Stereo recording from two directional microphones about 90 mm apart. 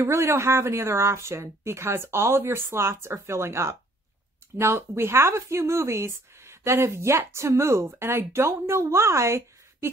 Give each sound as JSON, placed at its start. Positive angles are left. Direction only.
{"t": 0.0, "sound": "speech", "side_deg": -30}